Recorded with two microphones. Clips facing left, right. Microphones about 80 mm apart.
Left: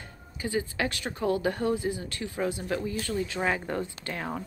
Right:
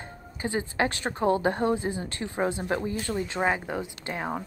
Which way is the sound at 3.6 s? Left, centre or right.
Centre.